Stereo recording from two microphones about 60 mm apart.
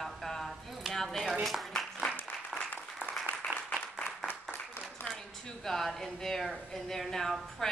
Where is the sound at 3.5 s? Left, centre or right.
Right.